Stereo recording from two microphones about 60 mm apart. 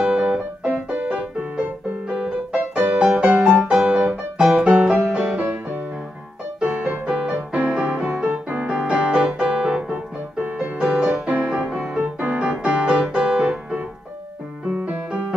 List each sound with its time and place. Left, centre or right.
0.0 s piano: centre
3.1 s music: centre
3.8 s piano: right
6.6 s music: centre
13.0 s piano: centre
14.9 s music: centre